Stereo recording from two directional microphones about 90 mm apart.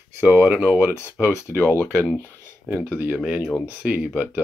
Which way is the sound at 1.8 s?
25° left (ahead or behind).